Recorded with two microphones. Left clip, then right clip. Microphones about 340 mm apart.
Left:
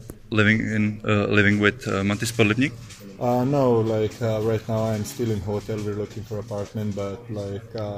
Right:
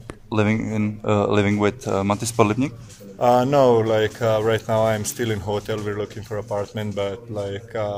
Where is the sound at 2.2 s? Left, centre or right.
Centre.